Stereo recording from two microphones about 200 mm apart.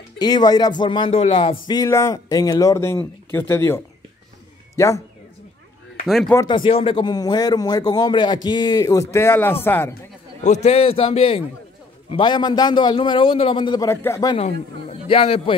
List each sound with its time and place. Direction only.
0.2 s a man's voice: 20° left (ahead or behind)
6.0 s speech: centre (ahead or behind)
6.3 s a man's voice: 25° left (ahead or behind)
10.4 s speech: 35° left (ahead or behind); by 14.3 s 15° left (ahead or behind)
14.3 s a man's voice: 30° left (ahead or behind)